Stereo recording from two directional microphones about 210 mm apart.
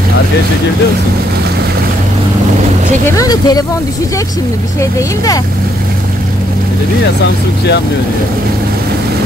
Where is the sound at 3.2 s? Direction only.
20° left (ahead or behind).